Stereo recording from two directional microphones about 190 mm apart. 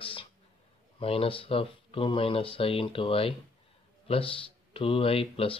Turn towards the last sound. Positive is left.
turn(degrees=30)  # may be behind; listen again after turning